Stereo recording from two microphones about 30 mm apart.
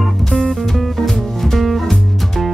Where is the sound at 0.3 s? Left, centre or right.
Left.